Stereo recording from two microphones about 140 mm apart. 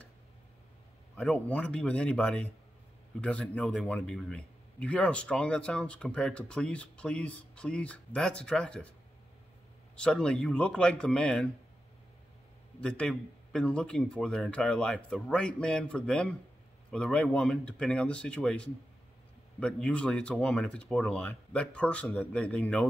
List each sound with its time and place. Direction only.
1.1 s a man's voice: 10° left (ahead or behind)
9.9 s speech: 5° left (ahead or behind)
12.8 s a man's voice: 5° left (ahead or behind)